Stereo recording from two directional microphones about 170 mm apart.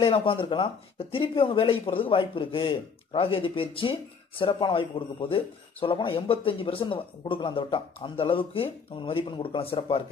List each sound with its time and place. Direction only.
0.0 s speech: 30° left (ahead or behind)